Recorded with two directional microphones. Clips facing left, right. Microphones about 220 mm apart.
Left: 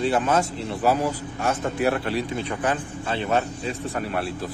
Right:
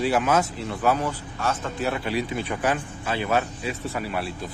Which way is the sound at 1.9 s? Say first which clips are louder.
Left 1 dB; centre (ahead or behind).